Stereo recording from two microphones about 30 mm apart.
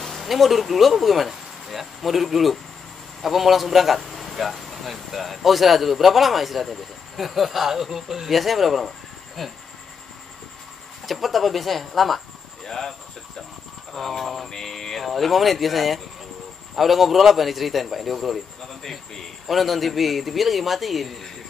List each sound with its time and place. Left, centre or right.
0.0 s speech: centre
11.1 s speech: centre
12.6 s speech: centre
13.9 s speech: centre
14.5 s a sound: centre
15.0 s speech: centre